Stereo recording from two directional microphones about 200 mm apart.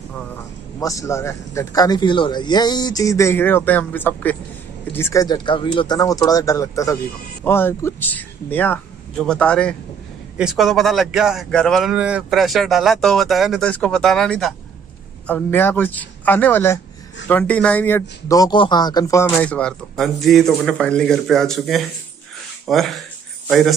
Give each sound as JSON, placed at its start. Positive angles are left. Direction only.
{"t": 0.7, "sound": "a man's voice", "side_deg": 15}